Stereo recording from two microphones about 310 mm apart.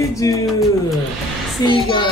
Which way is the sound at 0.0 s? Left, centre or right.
Centre.